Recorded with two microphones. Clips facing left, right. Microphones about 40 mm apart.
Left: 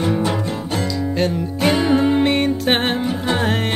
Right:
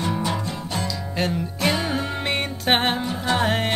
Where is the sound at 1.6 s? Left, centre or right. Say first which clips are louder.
Left 8 dB; centre.